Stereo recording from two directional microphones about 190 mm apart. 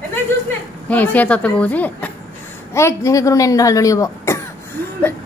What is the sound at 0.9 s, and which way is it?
Speech, 10° left (ahead or behind).